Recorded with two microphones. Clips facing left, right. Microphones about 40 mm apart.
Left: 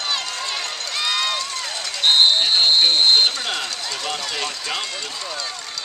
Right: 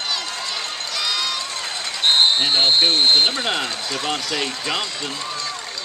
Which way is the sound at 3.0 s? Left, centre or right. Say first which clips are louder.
Even; centre.